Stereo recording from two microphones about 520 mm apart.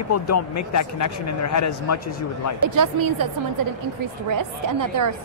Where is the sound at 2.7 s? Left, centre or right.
Right.